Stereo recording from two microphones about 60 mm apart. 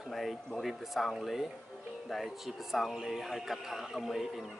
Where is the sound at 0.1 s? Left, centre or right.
Centre.